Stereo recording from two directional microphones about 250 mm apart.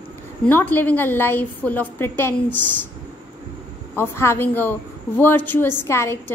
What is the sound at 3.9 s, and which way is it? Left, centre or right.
A woman's voice, centre.